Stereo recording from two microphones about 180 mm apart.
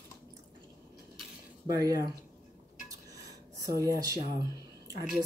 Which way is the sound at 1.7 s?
20° right (ahead or behind).